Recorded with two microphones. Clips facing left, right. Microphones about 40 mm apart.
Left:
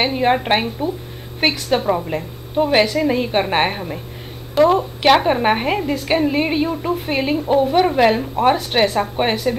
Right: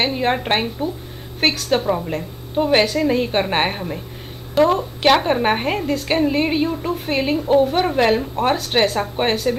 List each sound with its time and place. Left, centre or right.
0.0 s a woman's voice: centre
2.5 s a woman's voice: centre
2.8 s a woman's voice: centre
3.1 s a woman's voice: centre